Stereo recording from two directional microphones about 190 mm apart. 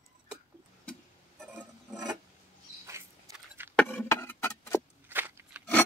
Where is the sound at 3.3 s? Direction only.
10° right (ahead or behind).